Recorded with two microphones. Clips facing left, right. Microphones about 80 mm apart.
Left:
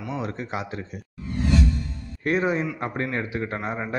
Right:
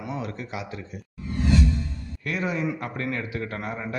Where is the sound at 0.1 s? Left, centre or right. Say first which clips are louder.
Left 4 dB; left.